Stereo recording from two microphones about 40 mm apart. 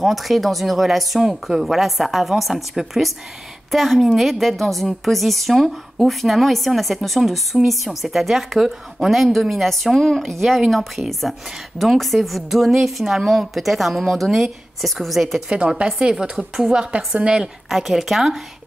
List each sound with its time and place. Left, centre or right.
0.0 s a woman's voice: centre
15.8 s speech: right
17.6 s a woman's voice: centre